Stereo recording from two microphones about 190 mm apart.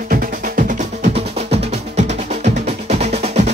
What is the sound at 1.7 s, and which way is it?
Music, 35° right (ahead or behind).